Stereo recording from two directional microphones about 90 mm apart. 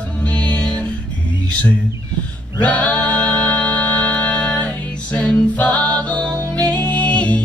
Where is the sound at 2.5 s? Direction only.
15° left (ahead or behind).